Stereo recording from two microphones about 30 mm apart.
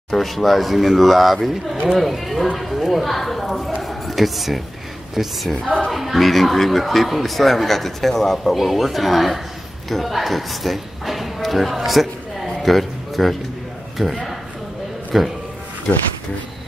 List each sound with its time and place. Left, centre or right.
0.1 s speech: centre
3.8 s a sound: centre
5.2 s speech: centre
5.9 s a sound: centre
6.2 s speech: centre
12.6 s music: centre
13.9 s speech: centre